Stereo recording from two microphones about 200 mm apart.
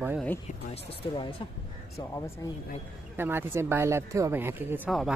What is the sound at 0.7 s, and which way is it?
Speech, 25° left (ahead or behind).